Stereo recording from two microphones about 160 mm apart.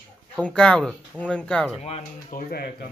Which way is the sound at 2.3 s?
75° left (ahead or behind).